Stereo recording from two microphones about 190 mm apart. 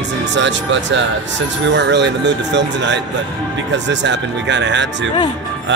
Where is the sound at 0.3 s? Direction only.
70° right (ahead or behind).